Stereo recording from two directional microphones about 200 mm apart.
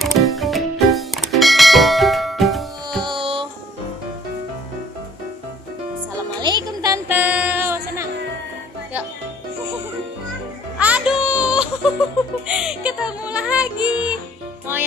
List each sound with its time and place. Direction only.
0.0 s music: centre (ahead or behind)
3.0 s music: 25° right (ahead or behind)
6.4 s music: 20° right (ahead or behind)
10.8 s music: 5° right (ahead or behind)